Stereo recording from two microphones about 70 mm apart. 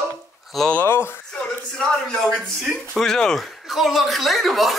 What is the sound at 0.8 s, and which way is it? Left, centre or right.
Speech, left.